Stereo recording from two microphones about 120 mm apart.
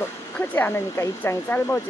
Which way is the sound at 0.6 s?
20° left (ahead or behind).